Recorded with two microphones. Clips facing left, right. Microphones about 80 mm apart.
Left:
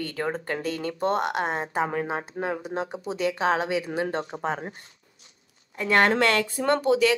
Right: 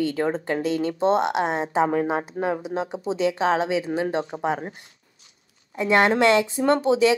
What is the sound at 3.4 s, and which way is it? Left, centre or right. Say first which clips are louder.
Speech: right 1 dB; right.